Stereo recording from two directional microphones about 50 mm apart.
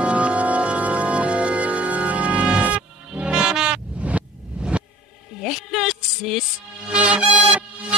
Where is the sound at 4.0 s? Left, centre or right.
Right.